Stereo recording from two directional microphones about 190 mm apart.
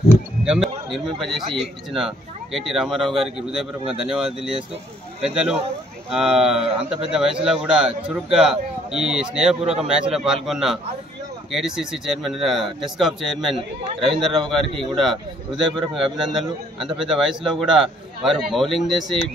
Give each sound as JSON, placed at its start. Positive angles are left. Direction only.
{"t": 0.5, "sound": "a man's voice", "side_deg": 0}
{"t": 6.6, "sound": "speech", "side_deg": -30}
{"t": 7.1, "sound": "a man's voice", "side_deg": -5}